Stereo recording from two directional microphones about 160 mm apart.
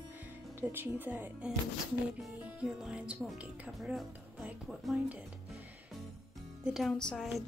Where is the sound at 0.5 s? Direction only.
15° right (ahead or behind).